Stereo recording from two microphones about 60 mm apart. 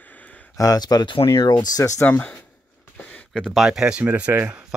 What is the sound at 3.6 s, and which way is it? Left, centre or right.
Speech, centre.